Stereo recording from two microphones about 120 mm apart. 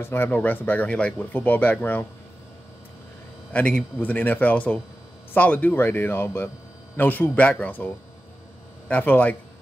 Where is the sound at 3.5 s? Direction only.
10° left (ahead or behind).